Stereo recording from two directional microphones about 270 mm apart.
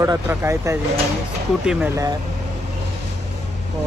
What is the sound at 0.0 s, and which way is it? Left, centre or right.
Speech, centre.